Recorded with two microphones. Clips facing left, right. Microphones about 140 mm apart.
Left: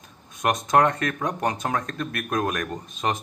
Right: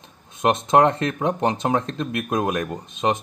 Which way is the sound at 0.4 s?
25° right (ahead or behind).